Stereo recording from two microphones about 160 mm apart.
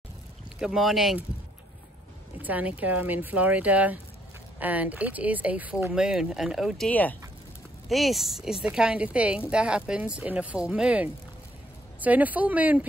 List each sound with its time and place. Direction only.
0.6 s speech: 5° right (ahead or behind)
2.4 s speech: 10° right (ahead or behind)
6.9 s speech: 10° left (ahead or behind); by 12.8 s 10° right (ahead or behind)